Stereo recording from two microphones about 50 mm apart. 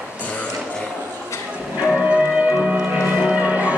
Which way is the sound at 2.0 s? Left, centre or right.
Right.